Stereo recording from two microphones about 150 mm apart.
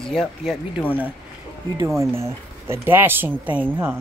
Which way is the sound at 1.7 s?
20° right (ahead or behind).